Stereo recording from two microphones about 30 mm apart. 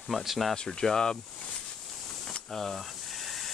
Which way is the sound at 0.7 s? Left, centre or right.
Centre.